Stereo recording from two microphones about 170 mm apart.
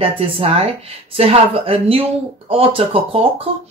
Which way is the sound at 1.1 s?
35° right (ahead or behind).